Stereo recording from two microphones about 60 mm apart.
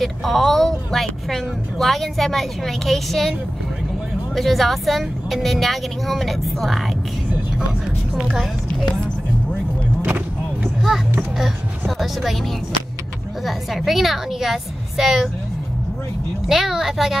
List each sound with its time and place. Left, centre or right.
0.0 s speech: centre
4.4 s speech: centre
10.0 s a sound: right
12.0 s speech: centre
13.5 s speech: centre
16.4 s speech: centre